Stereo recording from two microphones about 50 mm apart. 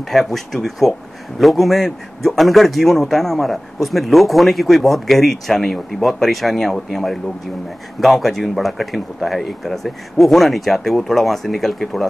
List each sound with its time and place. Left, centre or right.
0.1 s a man's voice: centre